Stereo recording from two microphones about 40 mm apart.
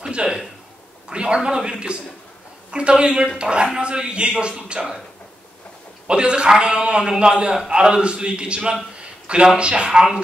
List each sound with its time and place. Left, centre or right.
0.1 s speech: right
6.0 s speech: right